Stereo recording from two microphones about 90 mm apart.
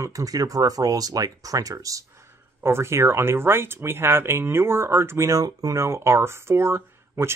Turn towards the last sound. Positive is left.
turn(degrees=-30)  # may be behind; listen again after turning